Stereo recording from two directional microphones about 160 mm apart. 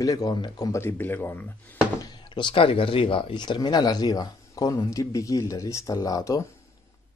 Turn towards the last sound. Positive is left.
turn(degrees=20)  # may be behind; listen again after turning